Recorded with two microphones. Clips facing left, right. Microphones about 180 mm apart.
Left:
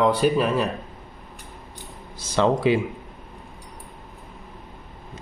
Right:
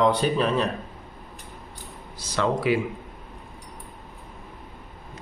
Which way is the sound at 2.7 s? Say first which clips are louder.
Left 1 dB; 25° left (ahead or behind).